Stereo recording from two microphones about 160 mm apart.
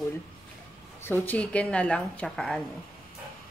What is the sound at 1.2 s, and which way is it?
A woman's voice, 10° left (ahead or behind).